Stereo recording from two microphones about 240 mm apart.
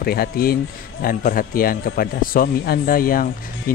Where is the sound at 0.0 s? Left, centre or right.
Left.